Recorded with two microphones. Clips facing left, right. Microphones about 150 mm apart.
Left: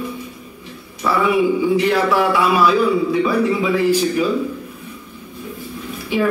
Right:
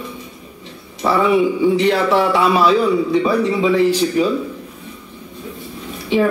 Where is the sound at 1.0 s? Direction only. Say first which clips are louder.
Right 2 dB; 30° right (ahead or behind).